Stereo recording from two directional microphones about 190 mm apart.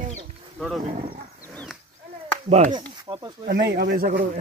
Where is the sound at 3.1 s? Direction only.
20° right (ahead or behind).